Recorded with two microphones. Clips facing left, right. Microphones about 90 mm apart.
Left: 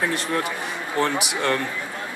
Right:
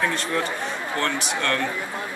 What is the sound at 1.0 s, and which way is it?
Speech, 10° left (ahead or behind).